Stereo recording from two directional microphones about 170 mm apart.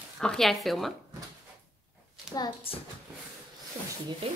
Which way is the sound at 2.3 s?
5° right (ahead or behind).